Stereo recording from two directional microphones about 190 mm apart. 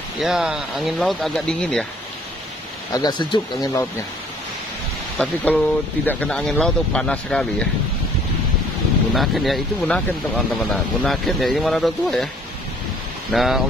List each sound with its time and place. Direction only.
0.2 s speech: 5° right (ahead or behind)
2.9 s speech: 20° left (ahead or behind)
5.1 s speech: 10° left (ahead or behind)
9.1 s speech: centre (ahead or behind)
13.3 s speech: centre (ahead or behind)